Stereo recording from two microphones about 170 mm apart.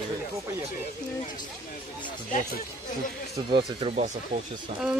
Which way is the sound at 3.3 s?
30° right (ahead or behind).